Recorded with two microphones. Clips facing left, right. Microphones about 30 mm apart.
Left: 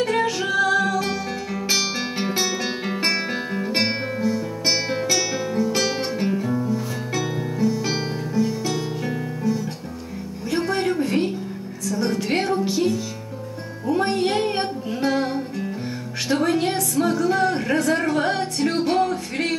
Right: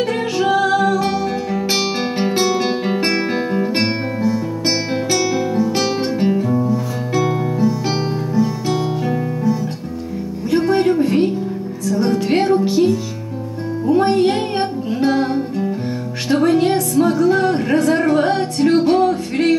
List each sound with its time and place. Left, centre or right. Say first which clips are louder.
0.0 s music: right 3 dB; centre